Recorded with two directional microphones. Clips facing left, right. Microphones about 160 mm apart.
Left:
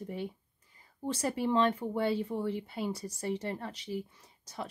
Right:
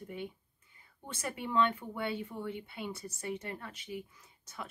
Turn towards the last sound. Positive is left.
turn(degrees=35)  # may be behind; listen again after turning